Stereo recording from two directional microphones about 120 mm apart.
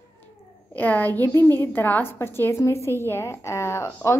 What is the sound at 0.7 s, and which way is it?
A woman's voice, 15° left (ahead or behind).